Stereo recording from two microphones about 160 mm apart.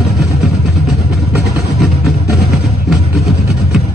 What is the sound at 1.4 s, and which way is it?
Vehicle, 90° left.